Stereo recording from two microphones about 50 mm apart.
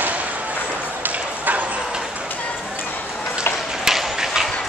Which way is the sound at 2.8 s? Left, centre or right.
Left.